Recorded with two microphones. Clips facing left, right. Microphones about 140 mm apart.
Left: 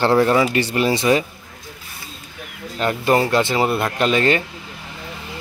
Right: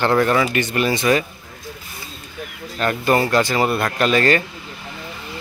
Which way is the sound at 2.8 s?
20° left (ahead or behind).